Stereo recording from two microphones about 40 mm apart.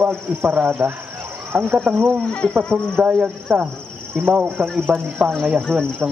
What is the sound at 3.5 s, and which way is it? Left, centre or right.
Speech, right.